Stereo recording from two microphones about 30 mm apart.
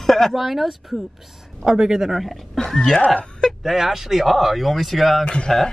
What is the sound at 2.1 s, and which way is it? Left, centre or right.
Speech, centre.